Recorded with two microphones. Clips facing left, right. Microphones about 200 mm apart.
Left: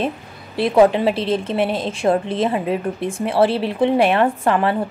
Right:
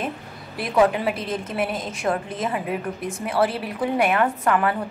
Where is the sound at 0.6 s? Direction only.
30° left (ahead or behind).